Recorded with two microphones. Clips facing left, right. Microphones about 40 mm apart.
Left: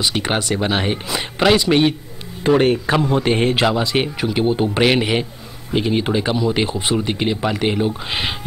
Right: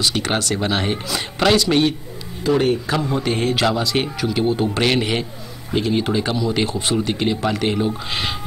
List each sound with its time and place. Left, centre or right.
0.0 s speech: centre
2.6 s a man's voice: left
3.6 s speech: centre